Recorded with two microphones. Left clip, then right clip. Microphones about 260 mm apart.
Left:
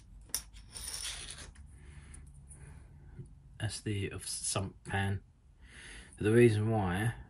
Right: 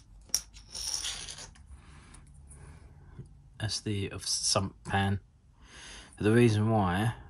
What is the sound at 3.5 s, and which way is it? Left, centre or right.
Speech, centre.